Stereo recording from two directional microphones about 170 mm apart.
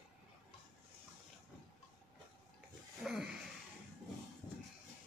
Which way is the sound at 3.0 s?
5° right (ahead or behind).